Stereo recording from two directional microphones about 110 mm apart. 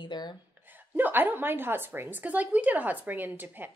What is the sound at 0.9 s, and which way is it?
A woman's voice, 15° right (ahead or behind).